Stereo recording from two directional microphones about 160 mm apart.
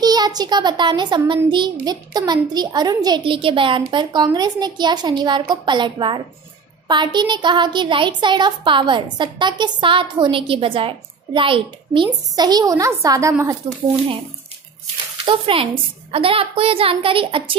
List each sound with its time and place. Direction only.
0.0 s a woman's voice: 25° right (ahead or behind)
15.2 s a woman's voice: 35° right (ahead or behind)